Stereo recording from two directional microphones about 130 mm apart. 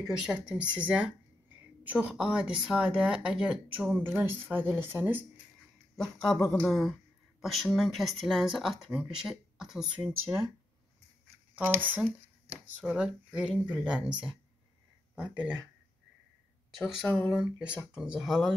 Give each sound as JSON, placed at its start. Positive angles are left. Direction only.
{"t": 0.0, "sound": "speech", "side_deg": -10}
{"t": 6.1, "sound": "speech", "side_deg": 5}
{"t": 7.4, "sound": "speech", "side_deg": 0}
{"t": 11.5, "sound": "speech", "side_deg": -15}
{"t": 16.7, "sound": "speech", "side_deg": -5}